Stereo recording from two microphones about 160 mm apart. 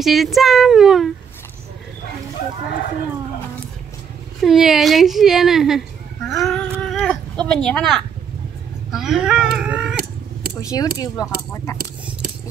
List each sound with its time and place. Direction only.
0.0 s a woman's voice: centre (ahead or behind)
4.4 s a woman's voice: centre (ahead or behind)
6.2 s a sound: centre (ahead or behind)
8.9 s speech: centre (ahead or behind)
10.6 s speech: 20° left (ahead or behind)